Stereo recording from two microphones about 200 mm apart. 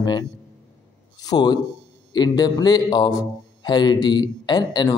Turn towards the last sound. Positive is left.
turn(degrees=20)  # may be behind; listen again after turning